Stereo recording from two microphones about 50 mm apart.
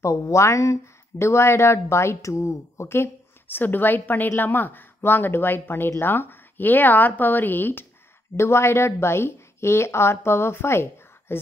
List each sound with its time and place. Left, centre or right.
0.0 s speech: left
3.4 s a woman's voice: left
8.4 s a woman's voice: left